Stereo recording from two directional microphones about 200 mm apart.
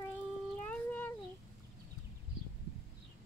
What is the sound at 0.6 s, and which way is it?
Cat, 10° left (ahead or behind).